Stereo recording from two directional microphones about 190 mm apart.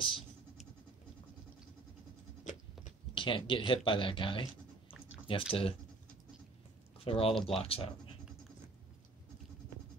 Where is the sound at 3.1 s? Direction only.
25° left (ahead or behind).